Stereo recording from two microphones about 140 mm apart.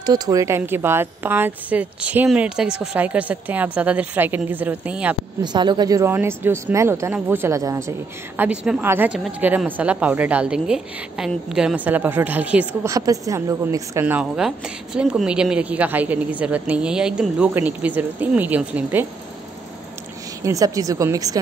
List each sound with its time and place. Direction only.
0.0 s a woman's voice: 30° right (ahead or behind); by 5.1 s 10° right (ahead or behind)
5.4 s speech: 30° right (ahead or behind)
8.4 s a woman's voice: 10° right (ahead or behind)
12.8 s a woman's voice: 25° right (ahead or behind)
20.4 s speech: 25° right (ahead or behind)